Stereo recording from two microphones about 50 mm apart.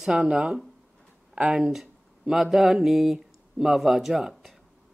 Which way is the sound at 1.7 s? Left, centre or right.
Centre.